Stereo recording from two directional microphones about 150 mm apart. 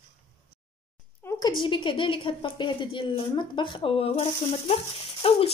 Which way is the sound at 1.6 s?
35° left (ahead or behind).